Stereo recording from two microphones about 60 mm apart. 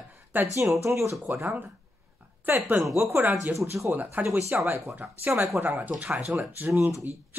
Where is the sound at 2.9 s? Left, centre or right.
Right.